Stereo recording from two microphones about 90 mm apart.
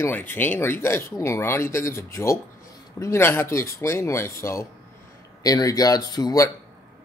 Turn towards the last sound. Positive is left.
turn(degrees=50)  # may be behind; listen again after turning